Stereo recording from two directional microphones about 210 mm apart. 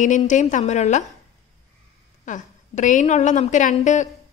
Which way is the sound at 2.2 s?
35° left (ahead or behind).